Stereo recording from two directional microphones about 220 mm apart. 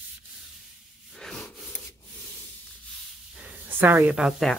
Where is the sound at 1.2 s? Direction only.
Centre (ahead or behind).